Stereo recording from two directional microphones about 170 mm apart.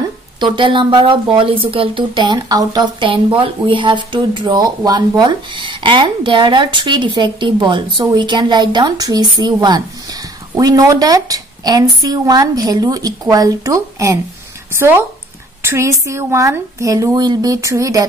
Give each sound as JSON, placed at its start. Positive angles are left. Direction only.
{"t": 0.4, "sound": "speech", "side_deg": -30}